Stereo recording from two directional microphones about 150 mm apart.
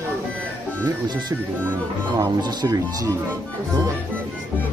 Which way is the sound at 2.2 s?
30° right (ahead or behind).